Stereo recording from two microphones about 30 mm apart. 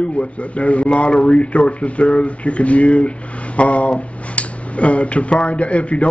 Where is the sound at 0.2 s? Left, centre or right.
Left.